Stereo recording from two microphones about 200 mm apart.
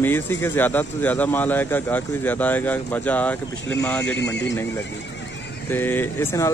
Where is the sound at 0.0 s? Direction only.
10° left (ahead or behind).